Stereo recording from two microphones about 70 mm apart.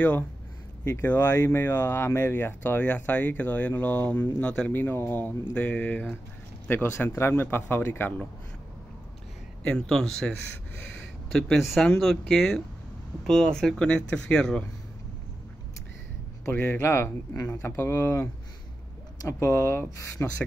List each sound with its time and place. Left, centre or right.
0.8 s speech: left
4.7 s a man's voice: left
9.6 s speech: centre
11.0 s a sound: centre
11.6 s speech: centre
16.4 s a man's voice: left